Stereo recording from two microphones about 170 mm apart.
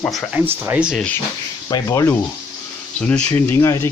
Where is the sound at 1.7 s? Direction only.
20° left (ahead or behind).